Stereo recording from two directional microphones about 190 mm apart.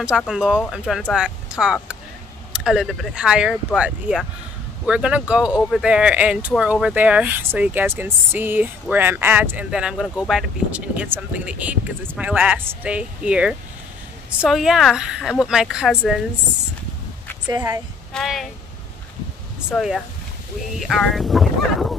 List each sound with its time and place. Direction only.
0.3 s speech: 5° right (ahead or behind)
17.5 s speech: 15° right (ahead or behind)
18.1 s speech: centre (ahead or behind)
19.7 s speech: centre (ahead or behind)